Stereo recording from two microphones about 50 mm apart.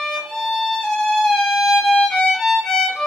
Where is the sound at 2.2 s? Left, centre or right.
Centre.